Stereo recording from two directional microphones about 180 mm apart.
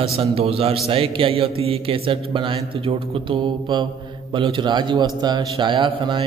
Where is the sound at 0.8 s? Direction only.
30° right (ahead or behind).